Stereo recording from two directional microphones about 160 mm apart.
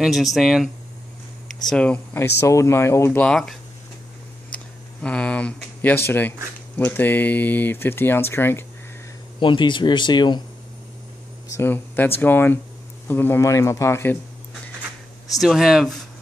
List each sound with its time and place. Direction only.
0.0 s speech: centre (ahead or behind)
1.7 s speech: 5° left (ahead or behind)
2.4 s speech: 20° left (ahead or behind)
5.0 s speech: 5° left (ahead or behind)
9.4 s speech: 30° left (ahead or behind)
11.4 s speech: 15° left (ahead or behind)
15.4 s speech: centre (ahead or behind)